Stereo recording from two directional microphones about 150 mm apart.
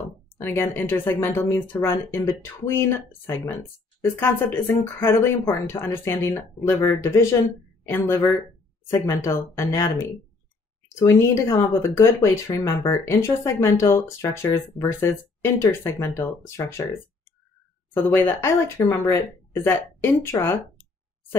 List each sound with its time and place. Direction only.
0.4 s speech: 15° left (ahead or behind)
17.9 s speech: 15° left (ahead or behind)